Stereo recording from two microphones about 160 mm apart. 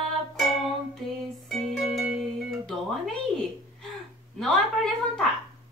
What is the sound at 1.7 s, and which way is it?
Music, centre (ahead or behind).